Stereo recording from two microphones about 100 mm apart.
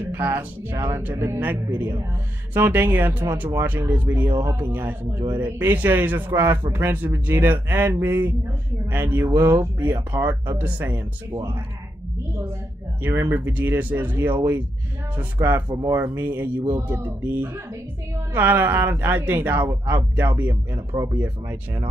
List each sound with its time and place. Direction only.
0.0 s speech: 20° right (ahead or behind)
10.6 s speech: 20° right (ahead or behind)
13.0 s speech: 25° right (ahead or behind)
15.7 s speech: 35° right (ahead or behind)
16.0 s speech: 20° right (ahead or behind)